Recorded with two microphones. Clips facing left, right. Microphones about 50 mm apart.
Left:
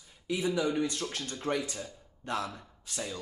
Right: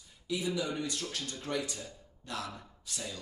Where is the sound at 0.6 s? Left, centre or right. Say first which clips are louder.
Left 5 dB; left.